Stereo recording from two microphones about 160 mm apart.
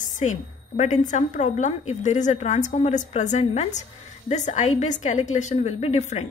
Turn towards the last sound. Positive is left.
turn(degrees=45)  # may be behind; listen again after turning